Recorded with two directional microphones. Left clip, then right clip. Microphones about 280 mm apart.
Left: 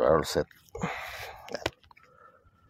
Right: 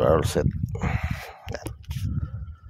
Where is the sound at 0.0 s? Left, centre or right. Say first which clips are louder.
Right 3 dB; centre.